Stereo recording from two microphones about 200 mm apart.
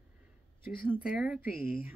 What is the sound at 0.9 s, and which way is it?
Speech, 5° right (ahead or behind).